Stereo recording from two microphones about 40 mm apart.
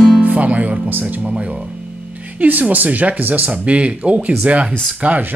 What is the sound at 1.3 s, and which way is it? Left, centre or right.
Speech, right.